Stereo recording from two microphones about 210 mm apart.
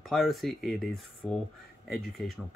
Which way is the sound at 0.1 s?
Centre (ahead or behind).